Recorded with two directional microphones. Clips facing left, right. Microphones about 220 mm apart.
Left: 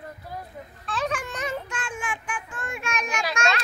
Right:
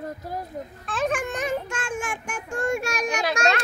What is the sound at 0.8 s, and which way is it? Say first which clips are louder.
Child singing: right 3 dB; 50° right (ahead or behind).